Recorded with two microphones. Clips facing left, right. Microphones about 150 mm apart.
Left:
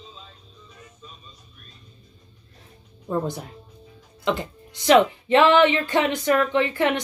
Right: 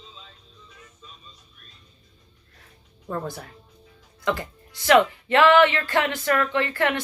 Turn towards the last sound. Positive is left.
turn(degrees=20)  # may be behind; listen again after turning